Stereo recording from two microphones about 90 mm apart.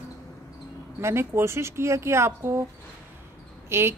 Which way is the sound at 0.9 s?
30° right (ahead or behind).